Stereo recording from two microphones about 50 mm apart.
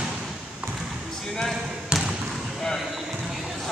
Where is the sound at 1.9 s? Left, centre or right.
Centre.